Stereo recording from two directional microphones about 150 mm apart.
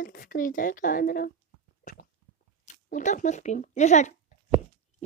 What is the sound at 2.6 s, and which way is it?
A woman's voice, 55° left (ahead or behind).